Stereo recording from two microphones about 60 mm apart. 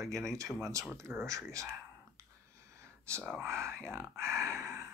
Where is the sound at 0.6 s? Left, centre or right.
Right.